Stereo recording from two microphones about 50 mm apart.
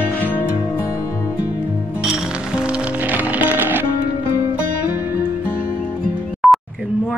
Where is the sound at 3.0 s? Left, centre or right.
Right.